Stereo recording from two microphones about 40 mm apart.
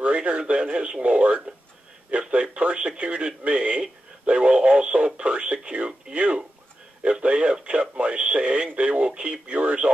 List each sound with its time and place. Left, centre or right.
0.0 s speech: right
2.0 s a sound: right
3.0 s speech: right